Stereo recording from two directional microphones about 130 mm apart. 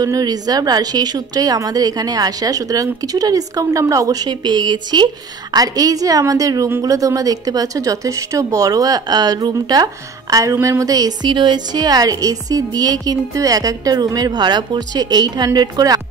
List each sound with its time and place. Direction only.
0.0 s a woman's voice: 30° right (ahead or behind)